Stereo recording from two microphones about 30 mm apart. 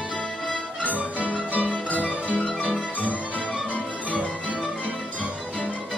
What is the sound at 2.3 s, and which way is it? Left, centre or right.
Music, left.